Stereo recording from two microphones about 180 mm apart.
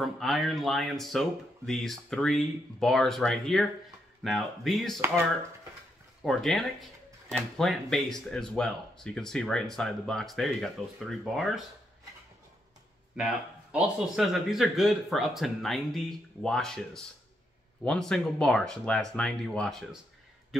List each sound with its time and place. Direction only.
0.0 s speech: centre (ahead or behind)
6.2 s speech: centre (ahead or behind)
13.1 s speech: 5° right (ahead or behind)